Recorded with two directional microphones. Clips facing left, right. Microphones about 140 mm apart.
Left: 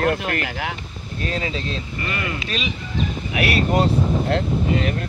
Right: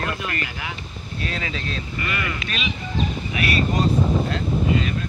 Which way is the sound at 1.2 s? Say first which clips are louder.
Left 4 dB; 35° left (ahead or behind).